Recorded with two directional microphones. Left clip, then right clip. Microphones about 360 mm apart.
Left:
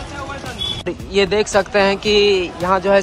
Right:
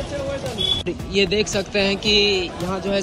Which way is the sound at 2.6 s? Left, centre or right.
Left.